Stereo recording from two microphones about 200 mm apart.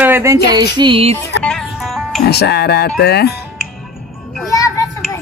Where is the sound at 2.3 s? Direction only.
55° left (ahead or behind).